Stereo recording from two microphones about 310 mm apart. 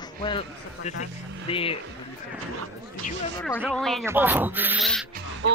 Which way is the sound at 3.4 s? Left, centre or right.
Centre.